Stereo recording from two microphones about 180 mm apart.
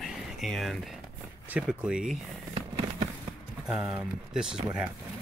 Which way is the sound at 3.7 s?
5° right (ahead or behind).